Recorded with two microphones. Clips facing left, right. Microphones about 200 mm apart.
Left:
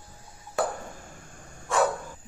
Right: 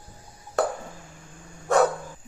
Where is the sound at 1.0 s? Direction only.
50° left (ahead or behind).